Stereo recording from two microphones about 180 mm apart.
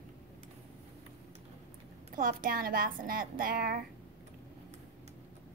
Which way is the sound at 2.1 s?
50° right (ahead or behind).